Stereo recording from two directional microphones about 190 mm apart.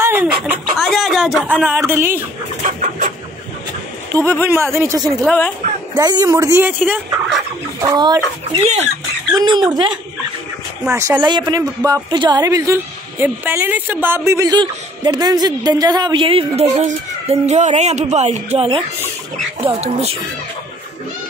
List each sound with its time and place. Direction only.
0.0 s chicken: 10° right (ahead or behind)
0.7 s speech: centre (ahead or behind)
2.6 s chicken: 45° right (ahead or behind)
4.1 s speech: 15° right (ahead or behind)
5.2 s a woman's voice: 10° left (ahead or behind)
5.9 s speech: 20° right (ahead or behind)
7.8 s a woman's voice: 20° right (ahead or behind)
8.5 s speech: 35° right (ahead or behind)
9.3 s a woman's voice: 20° right (ahead or behind)